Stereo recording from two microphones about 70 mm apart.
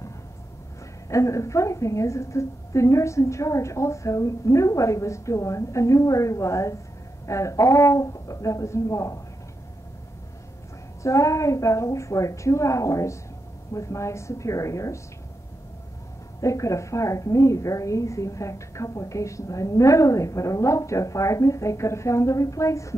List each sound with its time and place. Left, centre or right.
1.0 s a woman's voice: left
11.0 s a woman's voice: left
16.3 s a woman's voice: left